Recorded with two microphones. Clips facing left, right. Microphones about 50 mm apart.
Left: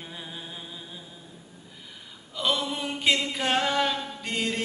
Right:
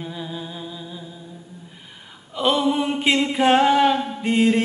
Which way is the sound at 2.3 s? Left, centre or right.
Right.